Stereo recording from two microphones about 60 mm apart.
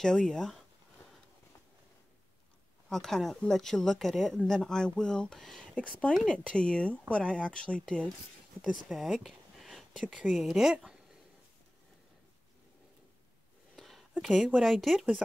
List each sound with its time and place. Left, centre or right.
0.0 s speech: centre
2.9 s speech: centre
5.8 s speech: centre
8.6 s speech: centre
9.0 s a sound: centre
10.2 s speech: centre
13.7 s a sound: centre
14.2 s speech: centre